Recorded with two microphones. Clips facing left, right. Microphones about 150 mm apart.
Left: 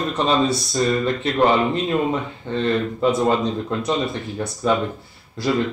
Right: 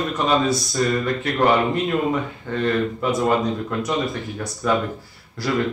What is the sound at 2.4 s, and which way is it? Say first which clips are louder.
Speech: left 1 dB; 25° left (ahead or behind).